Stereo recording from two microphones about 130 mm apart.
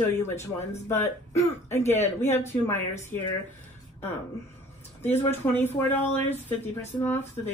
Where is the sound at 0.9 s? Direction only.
20° left (ahead or behind).